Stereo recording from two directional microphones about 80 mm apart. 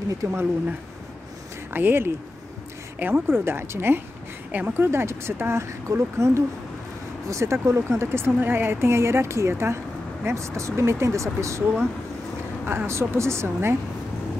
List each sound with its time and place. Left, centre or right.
0.3 s speech: right
12.6 s speech: right